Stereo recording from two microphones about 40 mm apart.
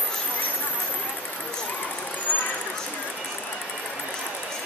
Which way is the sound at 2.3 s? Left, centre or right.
Left.